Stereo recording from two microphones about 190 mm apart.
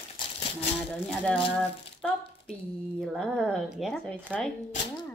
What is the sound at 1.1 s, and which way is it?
Speech, 5° left (ahead or behind).